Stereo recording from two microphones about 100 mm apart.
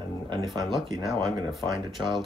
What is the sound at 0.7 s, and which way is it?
Speech, 50° right (ahead or behind).